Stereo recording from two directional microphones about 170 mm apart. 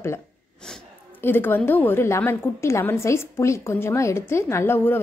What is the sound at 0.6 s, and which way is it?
A woman's voice, 5° left (ahead or behind).